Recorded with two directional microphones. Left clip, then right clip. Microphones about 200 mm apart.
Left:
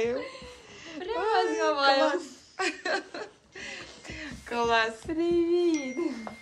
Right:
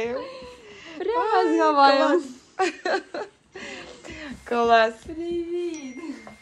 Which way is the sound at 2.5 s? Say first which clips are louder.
Right 5 dB; 5° left (ahead or behind).